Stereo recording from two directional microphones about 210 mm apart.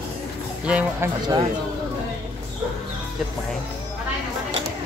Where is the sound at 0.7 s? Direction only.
10° right (ahead or behind).